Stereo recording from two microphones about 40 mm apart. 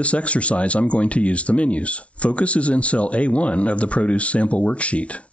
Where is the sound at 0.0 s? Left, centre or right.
Left.